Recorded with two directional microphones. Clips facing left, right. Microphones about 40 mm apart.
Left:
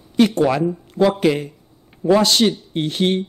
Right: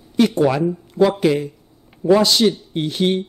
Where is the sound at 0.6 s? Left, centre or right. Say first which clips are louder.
Right 1 dB; left.